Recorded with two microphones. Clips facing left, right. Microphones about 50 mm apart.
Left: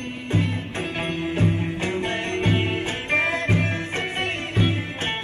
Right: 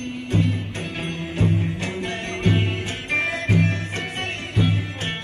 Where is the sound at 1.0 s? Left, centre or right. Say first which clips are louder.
Left 1 dB; left.